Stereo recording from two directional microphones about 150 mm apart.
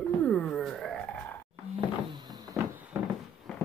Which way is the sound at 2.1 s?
25° right (ahead or behind).